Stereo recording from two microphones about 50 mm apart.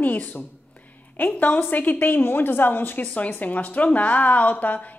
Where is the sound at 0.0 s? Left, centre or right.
Left.